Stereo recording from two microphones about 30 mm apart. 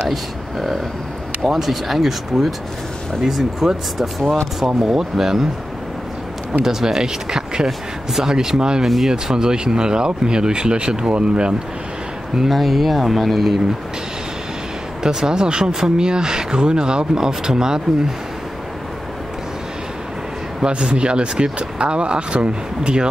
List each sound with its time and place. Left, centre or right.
0.1 s speech: centre
4.8 s speech: centre
6.6 s speech: centre
7.6 s speech: centre
8.3 s speech: centre
8.8 s speech: centre
9.1 s speech: right
12.4 s speech: centre
15.0 s speech: right
15.6 s speech: centre
20.6 s speech: right